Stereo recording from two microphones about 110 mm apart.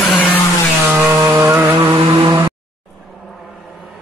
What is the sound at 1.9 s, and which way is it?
Vehicle, 40° right (ahead or behind).